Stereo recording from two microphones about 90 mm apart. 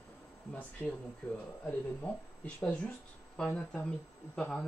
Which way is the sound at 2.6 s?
15° left (ahead or behind).